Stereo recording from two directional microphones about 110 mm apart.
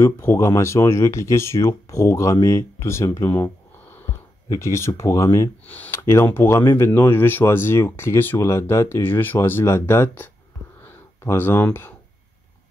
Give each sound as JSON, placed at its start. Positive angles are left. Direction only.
{"t": 0.0, "sound": "speech", "side_deg": 25}